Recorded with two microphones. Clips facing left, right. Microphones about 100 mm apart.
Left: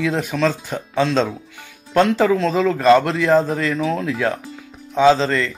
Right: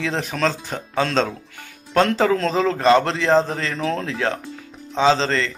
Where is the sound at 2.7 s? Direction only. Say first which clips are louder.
Left 3 dB; 30° right (ahead or behind).